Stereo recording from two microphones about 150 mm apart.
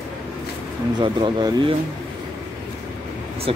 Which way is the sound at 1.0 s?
35° right (ahead or behind).